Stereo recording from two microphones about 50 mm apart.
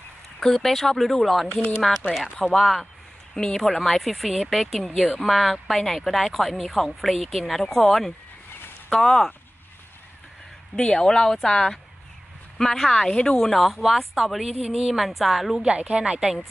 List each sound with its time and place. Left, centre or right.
0.4 s a woman's voice: centre
10.8 s speech: centre
13.6 s a woman's voice: centre
15.7 s a woman's voice: centre